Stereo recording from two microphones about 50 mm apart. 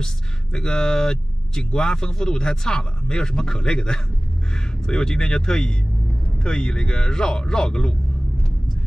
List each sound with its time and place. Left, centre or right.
0.0 s speech: centre